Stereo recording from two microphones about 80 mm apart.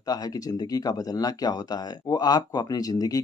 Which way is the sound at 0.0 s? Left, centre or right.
Left.